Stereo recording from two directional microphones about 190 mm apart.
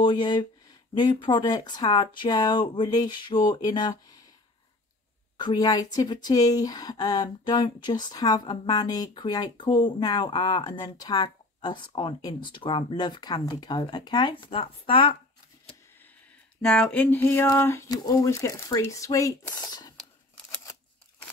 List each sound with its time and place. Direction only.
0.0 s speech: 25° left (ahead or behind)
5.4 s speech: 20° left (ahead or behind)
16.6 s speech: 5° left (ahead or behind)
20.0 s scissors: 5° left (ahead or behind)